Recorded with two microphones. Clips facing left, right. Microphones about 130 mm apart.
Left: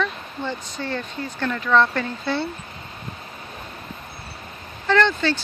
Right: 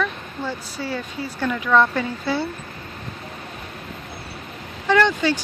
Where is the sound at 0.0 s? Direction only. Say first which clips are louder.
Even; 10° right (ahead or behind).